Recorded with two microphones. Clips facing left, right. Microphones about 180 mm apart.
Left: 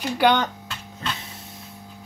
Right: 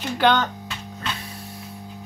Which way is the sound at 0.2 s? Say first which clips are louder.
Even; 15° left (ahead or behind).